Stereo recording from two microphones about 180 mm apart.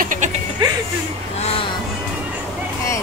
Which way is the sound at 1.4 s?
35° left (ahead or behind).